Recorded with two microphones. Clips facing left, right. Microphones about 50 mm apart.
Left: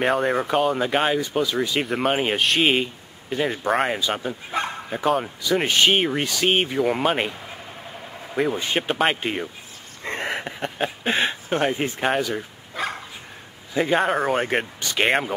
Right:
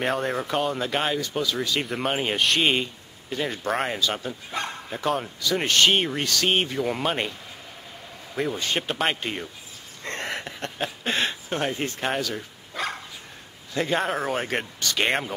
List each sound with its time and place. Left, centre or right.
0.0 s speech: centre
8.4 s speech: centre
10.0 s a sound: centre
11.4 s speech: centre
12.8 s dog: centre
13.7 s speech: centre